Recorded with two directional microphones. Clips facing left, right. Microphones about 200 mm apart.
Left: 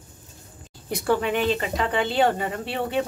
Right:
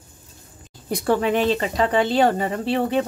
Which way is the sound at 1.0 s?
40° right (ahead or behind).